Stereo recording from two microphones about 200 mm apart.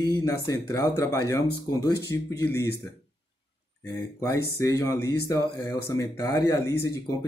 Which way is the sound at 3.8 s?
15° left (ahead or behind).